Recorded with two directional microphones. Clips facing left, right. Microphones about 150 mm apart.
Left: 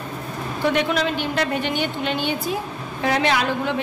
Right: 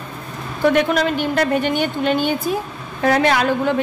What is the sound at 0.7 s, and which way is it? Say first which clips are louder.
A woman's voice: right 5 dB; 50° right (ahead or behind).